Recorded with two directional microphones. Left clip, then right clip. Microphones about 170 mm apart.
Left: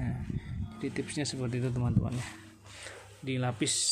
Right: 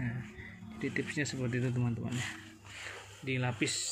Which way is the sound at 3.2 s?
25° left (ahead or behind).